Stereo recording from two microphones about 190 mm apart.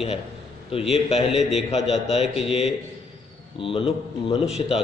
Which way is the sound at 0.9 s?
30° left (ahead or behind).